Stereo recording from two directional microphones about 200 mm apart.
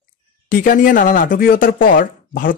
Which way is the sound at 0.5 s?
40° left (ahead or behind).